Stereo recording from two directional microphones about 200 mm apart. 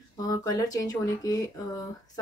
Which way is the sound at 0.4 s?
15° left (ahead or behind).